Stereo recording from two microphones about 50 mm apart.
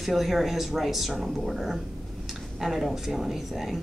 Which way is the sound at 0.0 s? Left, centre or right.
Centre.